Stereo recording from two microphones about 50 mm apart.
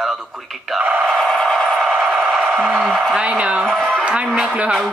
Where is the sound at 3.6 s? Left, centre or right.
Centre.